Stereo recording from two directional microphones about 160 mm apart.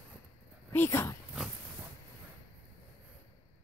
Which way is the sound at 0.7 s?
15° left (ahead or behind).